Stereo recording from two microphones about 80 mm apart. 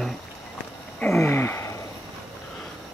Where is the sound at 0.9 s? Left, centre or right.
Left.